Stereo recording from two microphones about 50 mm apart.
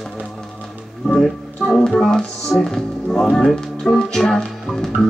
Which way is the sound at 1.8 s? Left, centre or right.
Centre.